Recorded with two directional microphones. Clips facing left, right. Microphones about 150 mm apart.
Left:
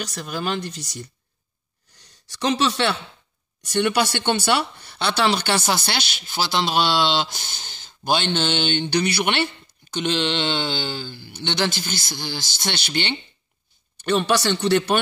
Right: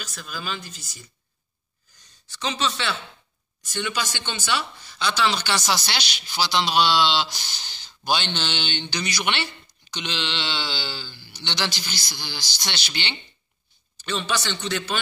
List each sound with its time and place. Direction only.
0.0 s speech: 70° left (ahead or behind); by 8.8 s 50° left (ahead or behind)
8.9 s speech: 60° left (ahead or behind)